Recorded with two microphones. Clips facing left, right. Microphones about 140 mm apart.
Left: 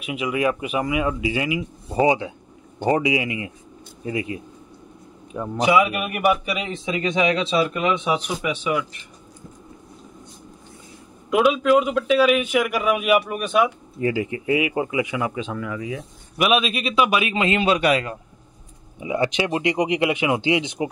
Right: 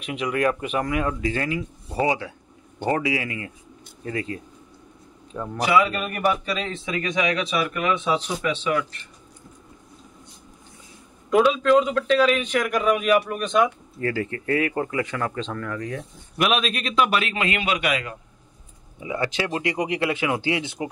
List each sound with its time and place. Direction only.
0.0 s a man's voice: 5° left (ahead or behind)
11.2 s a man's voice: 10° left (ahead or behind); by 18.1 s 35° left (ahead or behind)
18.9 s speech: 20° left (ahead or behind)